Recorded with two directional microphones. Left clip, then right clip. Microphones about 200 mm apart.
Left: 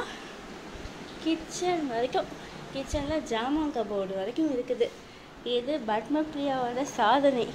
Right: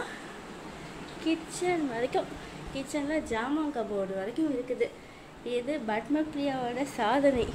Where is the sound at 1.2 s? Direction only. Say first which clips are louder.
Left 1 dB; 10° right (ahead or behind).